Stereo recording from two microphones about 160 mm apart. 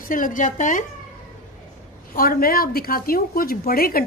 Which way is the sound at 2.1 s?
65° left (ahead or behind).